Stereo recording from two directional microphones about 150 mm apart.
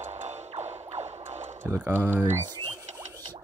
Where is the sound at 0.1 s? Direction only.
45° right (ahead or behind).